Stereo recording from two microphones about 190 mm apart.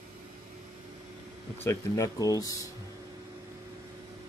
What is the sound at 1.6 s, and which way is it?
Speech, 15° left (ahead or behind).